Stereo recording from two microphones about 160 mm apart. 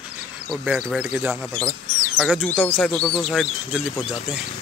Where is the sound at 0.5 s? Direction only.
Centre (ahead or behind).